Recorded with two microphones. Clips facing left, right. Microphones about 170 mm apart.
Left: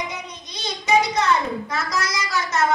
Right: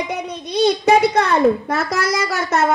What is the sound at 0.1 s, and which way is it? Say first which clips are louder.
A woman's voice: right 11 dB; 60° right (ahead or behind).